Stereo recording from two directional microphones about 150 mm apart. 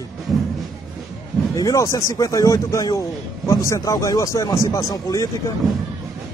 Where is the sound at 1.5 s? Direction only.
20° left (ahead or behind).